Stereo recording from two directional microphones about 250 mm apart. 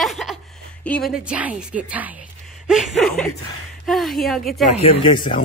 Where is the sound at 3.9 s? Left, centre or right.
Centre.